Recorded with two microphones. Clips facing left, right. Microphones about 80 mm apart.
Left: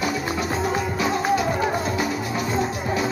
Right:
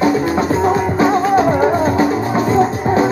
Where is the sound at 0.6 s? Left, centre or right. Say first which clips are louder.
Right 10 dB; right.